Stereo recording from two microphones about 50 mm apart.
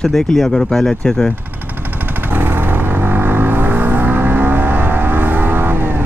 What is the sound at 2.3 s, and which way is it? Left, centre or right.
Vehicle, right.